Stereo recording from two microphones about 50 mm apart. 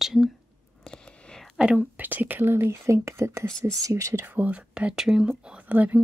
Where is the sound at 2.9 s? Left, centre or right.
Right.